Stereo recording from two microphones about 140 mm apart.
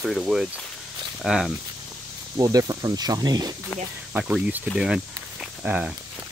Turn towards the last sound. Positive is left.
turn(degrees=-10)  # may be behind; listen again after turning